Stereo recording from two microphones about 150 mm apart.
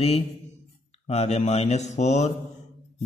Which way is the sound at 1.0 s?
45° left (ahead or behind).